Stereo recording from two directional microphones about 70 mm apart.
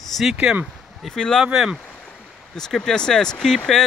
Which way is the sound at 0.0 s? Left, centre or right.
Centre.